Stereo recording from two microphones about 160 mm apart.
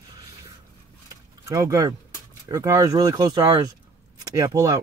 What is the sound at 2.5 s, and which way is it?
Speech, 20° right (ahead or behind).